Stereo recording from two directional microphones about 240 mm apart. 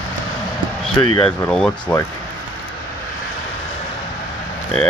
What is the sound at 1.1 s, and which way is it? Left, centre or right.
Speech, left.